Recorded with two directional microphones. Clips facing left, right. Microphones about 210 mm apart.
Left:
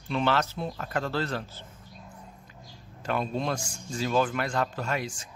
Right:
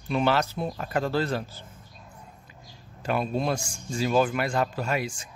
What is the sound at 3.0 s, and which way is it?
A man's voice, 10° right (ahead or behind).